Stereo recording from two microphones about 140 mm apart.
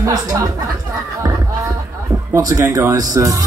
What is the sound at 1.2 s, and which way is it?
Music, 25° right (ahead or behind).